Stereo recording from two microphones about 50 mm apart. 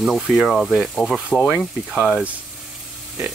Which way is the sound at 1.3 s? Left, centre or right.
Centre.